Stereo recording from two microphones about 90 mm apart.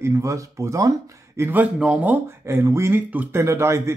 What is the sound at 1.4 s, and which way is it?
Speech, 20° right (ahead or behind).